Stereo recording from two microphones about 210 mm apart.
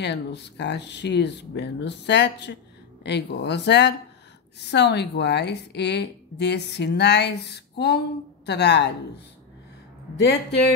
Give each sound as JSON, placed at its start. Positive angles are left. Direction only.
{"t": 0.0, "sound": "a woman's voice", "side_deg": 55}
{"t": 10.1, "sound": "a woman's voice", "side_deg": 50}